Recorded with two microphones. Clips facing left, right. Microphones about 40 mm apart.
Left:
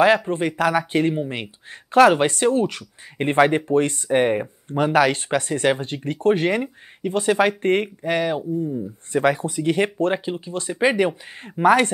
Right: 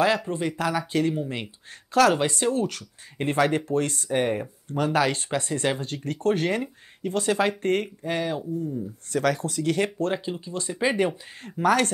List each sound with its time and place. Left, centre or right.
0.0 s speech: left